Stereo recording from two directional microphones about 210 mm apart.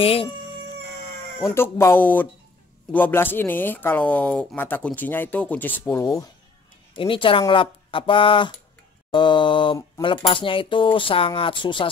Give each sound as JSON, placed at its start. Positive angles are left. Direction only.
{"t": 0.0, "sound": "speech", "side_deg": 25}
{"t": 1.4, "sound": "speech", "side_deg": 10}